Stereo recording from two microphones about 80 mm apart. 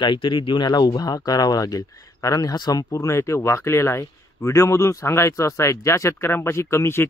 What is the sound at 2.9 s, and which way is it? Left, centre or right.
Speech, left.